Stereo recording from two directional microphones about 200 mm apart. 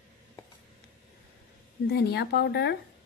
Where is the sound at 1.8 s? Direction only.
55° left (ahead or behind).